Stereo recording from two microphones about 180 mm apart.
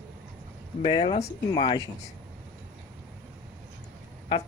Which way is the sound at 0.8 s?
30° left (ahead or behind).